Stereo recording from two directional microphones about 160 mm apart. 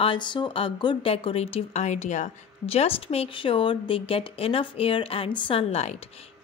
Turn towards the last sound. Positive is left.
turn(degrees=40)  # may be behind; listen again after turning